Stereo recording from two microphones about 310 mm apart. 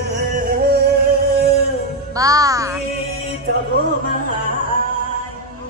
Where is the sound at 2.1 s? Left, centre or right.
Centre.